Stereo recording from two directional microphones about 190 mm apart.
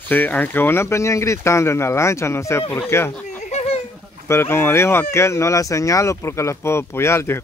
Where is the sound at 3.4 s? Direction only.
35° left (ahead or behind).